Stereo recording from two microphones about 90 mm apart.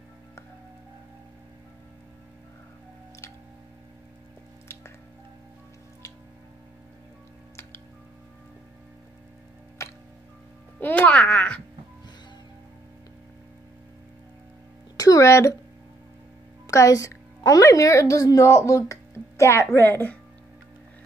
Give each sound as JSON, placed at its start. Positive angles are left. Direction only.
{"t": 9.8, "sound": "music", "side_deg": 35}
{"t": 10.8, "sound": "a child's voice", "side_deg": 20}
{"t": 15.0, "sound": "a sound", "side_deg": 40}
{"t": 16.6, "sound": "a woman's voice", "side_deg": 40}